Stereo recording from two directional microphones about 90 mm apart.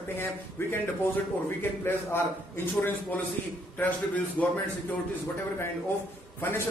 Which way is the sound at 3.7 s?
15° left (ahead or behind).